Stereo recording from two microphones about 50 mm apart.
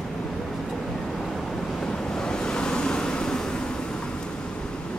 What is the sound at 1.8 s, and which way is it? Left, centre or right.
Vehicle, centre.